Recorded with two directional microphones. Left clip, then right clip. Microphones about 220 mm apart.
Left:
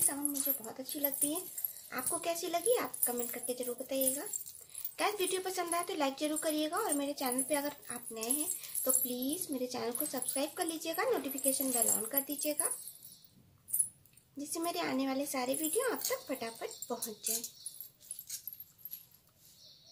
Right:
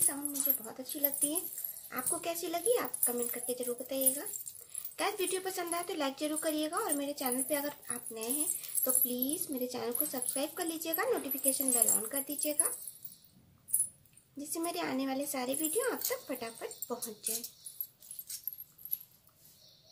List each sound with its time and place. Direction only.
0.4 s speech: centre (ahead or behind)
14.4 s speech: centre (ahead or behind)